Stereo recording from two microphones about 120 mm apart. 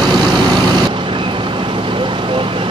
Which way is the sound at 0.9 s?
45° right (ahead or behind).